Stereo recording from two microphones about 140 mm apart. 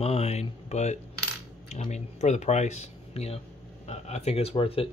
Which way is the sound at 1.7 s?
55° left (ahead or behind).